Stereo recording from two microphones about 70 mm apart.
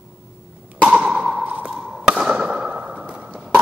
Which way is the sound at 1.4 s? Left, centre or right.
Right.